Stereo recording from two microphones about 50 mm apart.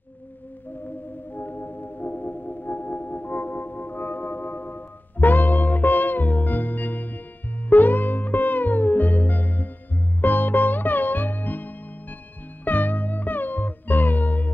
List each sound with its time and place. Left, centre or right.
0.8 s music: left